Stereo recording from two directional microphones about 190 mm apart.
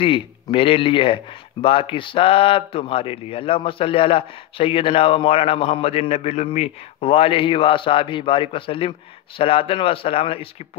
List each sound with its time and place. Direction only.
0.0 s speech: 30° left (ahead or behind)